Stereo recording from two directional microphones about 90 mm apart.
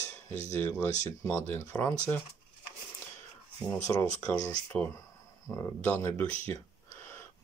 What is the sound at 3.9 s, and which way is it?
Speech, 30° left (ahead or behind).